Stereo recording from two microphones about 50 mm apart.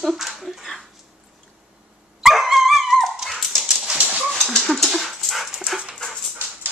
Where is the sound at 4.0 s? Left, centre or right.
Right.